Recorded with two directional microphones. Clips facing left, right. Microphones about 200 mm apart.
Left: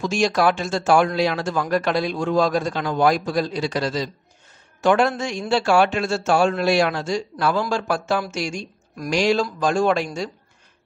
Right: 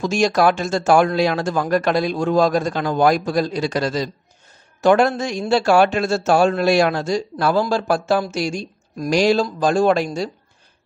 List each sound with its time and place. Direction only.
0.0 s a man's voice: 40° right (ahead or behind)